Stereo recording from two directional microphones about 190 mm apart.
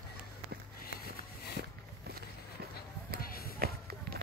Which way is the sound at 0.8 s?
55° left (ahead or behind).